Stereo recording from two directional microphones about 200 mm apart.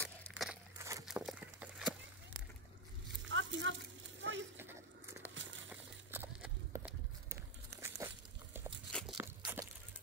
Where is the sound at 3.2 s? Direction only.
70° right (ahead or behind).